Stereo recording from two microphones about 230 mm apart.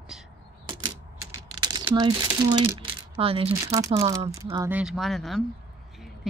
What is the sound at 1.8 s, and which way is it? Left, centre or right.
Speech, centre.